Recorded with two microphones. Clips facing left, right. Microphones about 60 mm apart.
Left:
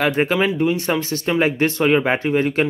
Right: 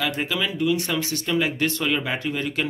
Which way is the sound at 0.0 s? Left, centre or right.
Left.